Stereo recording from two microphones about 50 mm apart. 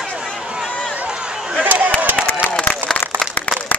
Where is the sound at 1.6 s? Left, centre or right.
Right.